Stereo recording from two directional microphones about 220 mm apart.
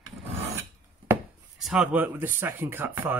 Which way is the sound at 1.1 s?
Centre (ahead or behind).